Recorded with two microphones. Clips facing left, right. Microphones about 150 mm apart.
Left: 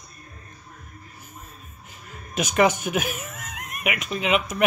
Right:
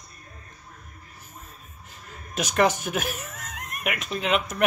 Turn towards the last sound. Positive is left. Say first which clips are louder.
# left 2 dB
turn(degrees=5)  # may be behind; listen again after turning